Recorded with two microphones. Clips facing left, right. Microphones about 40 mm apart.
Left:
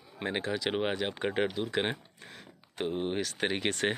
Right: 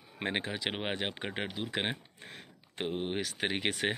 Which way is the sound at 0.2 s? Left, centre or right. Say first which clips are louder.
Even; right.